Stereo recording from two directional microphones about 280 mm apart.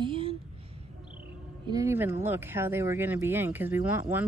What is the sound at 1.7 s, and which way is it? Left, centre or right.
Speech, centre.